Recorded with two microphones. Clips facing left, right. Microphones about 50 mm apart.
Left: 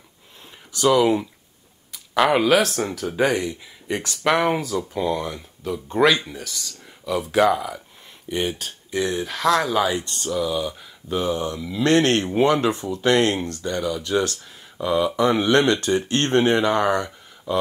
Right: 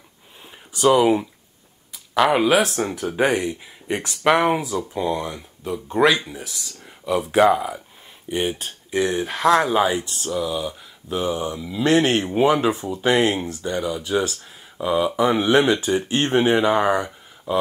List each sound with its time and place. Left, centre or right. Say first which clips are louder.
0.7 s speech: right 1 dB; right
1.9 s a sound: right 1 dB; centre
2.5 s speech: even; centre
3.2 s speech: right 1 dB; centre
9.9 s speech: even; centre